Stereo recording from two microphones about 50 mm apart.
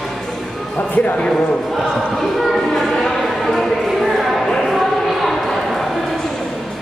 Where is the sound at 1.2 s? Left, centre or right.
Centre.